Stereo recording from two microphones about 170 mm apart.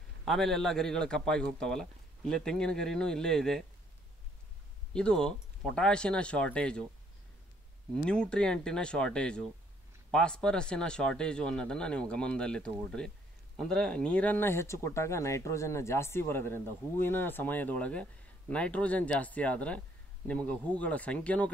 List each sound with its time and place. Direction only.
0.2 s a man's voice: centre (ahead or behind)
4.9 s a man's voice: 5° left (ahead or behind)
7.9 s a man's voice: 5° left (ahead or behind)